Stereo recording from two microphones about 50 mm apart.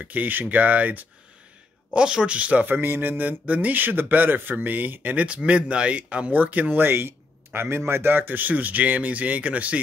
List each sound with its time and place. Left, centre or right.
0.0 s speech: right
2.0 s speech: centre
2.6 s speech: right